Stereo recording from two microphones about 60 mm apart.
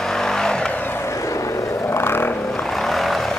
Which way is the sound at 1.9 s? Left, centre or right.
Left.